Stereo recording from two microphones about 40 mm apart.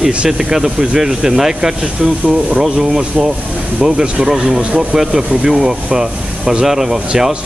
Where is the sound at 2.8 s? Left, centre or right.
Centre.